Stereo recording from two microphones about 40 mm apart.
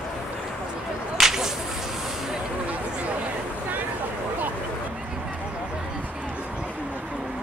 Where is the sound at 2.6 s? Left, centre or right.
Right.